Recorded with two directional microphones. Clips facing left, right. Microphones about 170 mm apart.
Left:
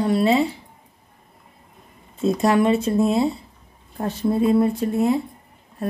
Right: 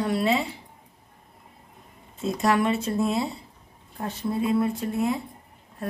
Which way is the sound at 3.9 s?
35° left (ahead or behind).